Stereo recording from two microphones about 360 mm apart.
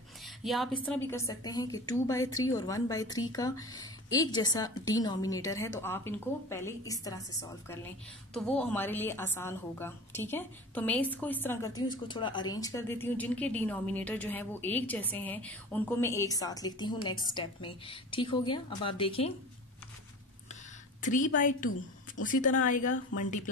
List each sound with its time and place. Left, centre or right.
0.4 s a woman's voice: centre
21.1 s a woman's voice: left